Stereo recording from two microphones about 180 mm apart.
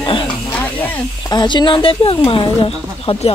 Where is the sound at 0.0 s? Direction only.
30° left (ahead or behind).